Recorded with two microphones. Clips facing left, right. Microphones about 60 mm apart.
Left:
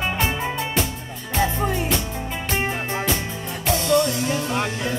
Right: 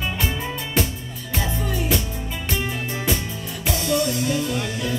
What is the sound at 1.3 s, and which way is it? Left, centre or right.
Music, left.